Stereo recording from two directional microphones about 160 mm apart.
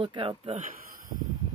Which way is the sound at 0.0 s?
30° right (ahead or behind).